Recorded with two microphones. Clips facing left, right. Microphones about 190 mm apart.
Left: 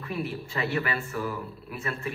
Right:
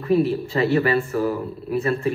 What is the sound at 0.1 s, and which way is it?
Speech, 35° right (ahead or behind).